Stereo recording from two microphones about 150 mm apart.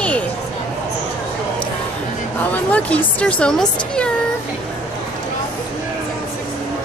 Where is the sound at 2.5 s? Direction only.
10° left (ahead or behind).